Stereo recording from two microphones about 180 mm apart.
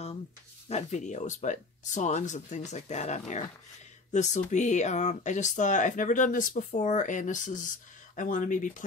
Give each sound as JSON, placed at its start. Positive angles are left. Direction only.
{"t": 0.7, "sound": "speech", "side_deg": 40}